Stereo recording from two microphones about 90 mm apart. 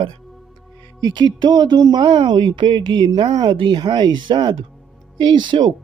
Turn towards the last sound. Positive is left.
turn(degrees=-60)  # may be behind; listen again after turning